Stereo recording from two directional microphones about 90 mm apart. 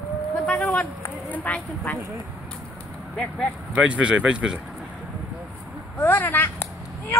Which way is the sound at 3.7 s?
15° right (ahead or behind).